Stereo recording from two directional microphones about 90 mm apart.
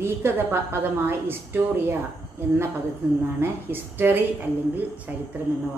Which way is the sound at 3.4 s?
20° right (ahead or behind).